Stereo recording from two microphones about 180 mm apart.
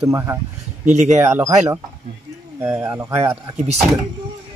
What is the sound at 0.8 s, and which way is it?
Speech, 40° right (ahead or behind).